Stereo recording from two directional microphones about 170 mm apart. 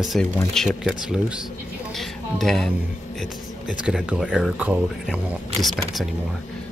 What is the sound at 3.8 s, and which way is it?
Speech, 5° right (ahead or behind).